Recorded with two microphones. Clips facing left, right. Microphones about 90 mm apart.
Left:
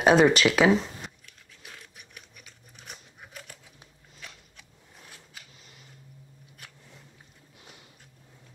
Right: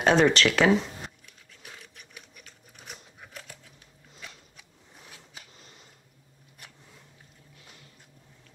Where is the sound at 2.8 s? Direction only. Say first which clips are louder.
Right 1 dB; centre (ahead or behind).